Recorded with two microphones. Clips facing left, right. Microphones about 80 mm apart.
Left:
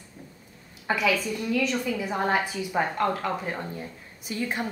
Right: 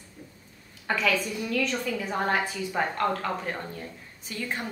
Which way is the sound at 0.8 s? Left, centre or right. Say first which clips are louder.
Left 1 dB; centre.